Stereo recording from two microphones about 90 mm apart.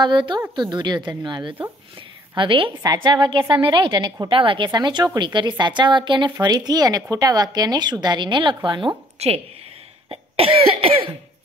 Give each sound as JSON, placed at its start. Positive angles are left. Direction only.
{"t": 0.0, "sound": "a woman's voice", "side_deg": -60}
{"t": 2.3, "sound": "a woman's voice", "side_deg": -70}
{"t": 3.0, "sound": "a woman's voice", "side_deg": -60}
{"t": 4.3, "sound": "a woman's voice", "side_deg": -75}
{"t": 4.6, "sound": "a woman's voice", "side_deg": -55}
{"t": 6.3, "sound": "a woman's voice", "side_deg": -45}
{"t": 10.0, "sound": "cough", "side_deg": -85}